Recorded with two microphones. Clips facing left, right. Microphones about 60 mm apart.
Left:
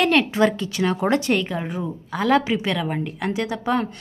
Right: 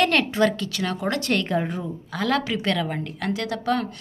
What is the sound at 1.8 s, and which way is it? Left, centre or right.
Speech, centre.